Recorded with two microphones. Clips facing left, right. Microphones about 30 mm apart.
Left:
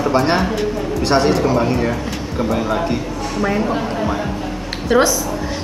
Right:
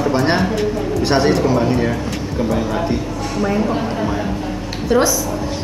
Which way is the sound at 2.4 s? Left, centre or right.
Centre.